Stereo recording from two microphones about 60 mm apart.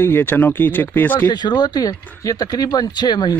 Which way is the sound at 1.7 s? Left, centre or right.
Left.